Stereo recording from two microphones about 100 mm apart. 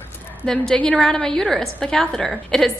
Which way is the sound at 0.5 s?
5° left (ahead or behind).